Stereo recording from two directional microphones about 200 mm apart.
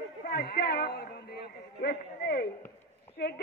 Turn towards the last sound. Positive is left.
turn(degrees=55)  # may be behind; listen again after turning